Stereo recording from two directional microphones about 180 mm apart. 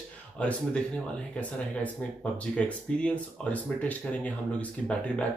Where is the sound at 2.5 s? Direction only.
5° left (ahead or behind).